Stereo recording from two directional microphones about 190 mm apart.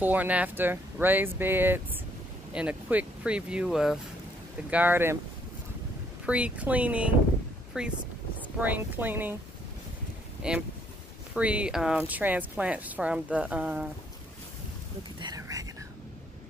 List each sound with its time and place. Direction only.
0.0 s speech: 10° right (ahead or behind)
6.2 s speech: 5° right (ahead or behind)
10.4 s speech: 5° right (ahead or behind)
15.1 s whispering: 20° right (ahead or behind)